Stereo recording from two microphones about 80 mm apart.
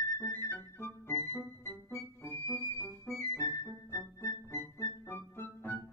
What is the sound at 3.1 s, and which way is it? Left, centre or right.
Music, left.